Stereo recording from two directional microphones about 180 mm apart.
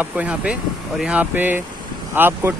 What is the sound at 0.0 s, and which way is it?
Speech, 10° right (ahead or behind).